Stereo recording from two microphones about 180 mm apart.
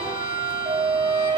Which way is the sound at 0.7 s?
30° right (ahead or behind).